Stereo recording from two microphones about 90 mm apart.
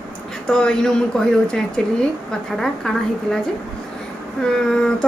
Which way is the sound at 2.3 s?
5° left (ahead or behind).